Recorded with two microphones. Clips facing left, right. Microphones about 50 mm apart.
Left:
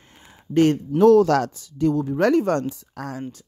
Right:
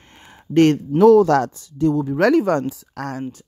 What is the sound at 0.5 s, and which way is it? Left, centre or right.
Speech, right.